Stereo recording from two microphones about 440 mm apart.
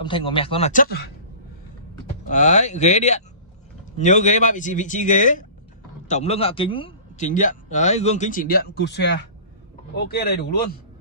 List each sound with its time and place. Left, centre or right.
0.0 s a man's voice: centre
2.2 s a man's voice: centre